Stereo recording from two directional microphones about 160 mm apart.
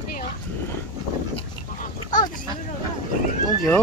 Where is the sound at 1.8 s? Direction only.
55° left (ahead or behind).